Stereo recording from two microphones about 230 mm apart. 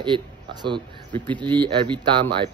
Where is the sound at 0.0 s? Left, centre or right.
Centre.